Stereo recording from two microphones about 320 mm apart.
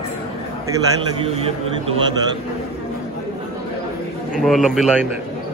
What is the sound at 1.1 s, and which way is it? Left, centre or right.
Speech, centre.